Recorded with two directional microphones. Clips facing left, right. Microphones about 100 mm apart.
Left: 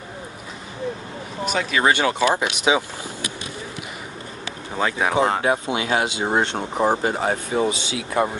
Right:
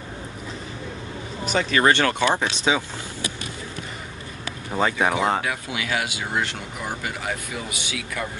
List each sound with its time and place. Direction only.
1.5 s speech: 5° left (ahead or behind)
4.7 s speech: centre (ahead or behind)
5.4 s speech: 30° left (ahead or behind)